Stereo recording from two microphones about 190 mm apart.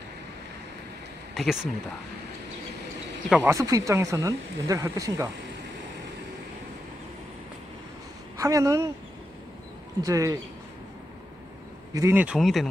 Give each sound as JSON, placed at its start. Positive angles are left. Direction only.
{"t": 1.3, "sound": "speech", "side_deg": 0}
{"t": 3.3, "sound": "speech", "side_deg": -5}
{"t": 3.5, "sound": "speech", "side_deg": -15}
{"t": 8.4, "sound": "speech", "side_deg": -15}
{"t": 10.0, "sound": "speech", "side_deg": -15}
{"t": 11.9, "sound": "speech", "side_deg": -15}